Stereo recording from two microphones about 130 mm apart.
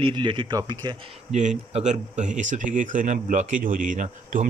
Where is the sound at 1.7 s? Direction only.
65° right (ahead or behind).